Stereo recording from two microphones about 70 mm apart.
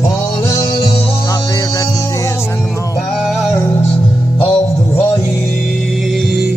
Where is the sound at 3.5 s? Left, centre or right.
Left.